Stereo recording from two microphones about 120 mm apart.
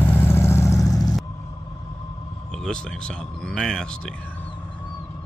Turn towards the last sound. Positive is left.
turn(degrees=5)  # may be behind; listen again after turning